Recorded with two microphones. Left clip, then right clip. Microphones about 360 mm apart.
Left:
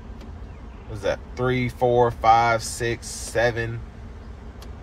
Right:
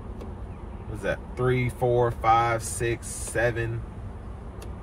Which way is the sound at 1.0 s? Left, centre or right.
Left.